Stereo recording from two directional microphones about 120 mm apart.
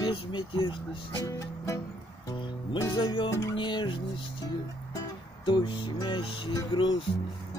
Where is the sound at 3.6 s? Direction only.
40° left (ahead or behind).